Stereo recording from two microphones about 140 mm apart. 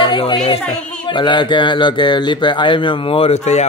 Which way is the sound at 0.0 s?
35° left (ahead or behind).